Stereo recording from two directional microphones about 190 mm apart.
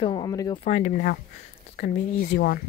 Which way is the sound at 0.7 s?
35° left (ahead or behind).